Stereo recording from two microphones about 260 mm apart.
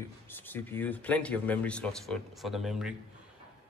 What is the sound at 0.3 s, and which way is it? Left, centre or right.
Speech, centre.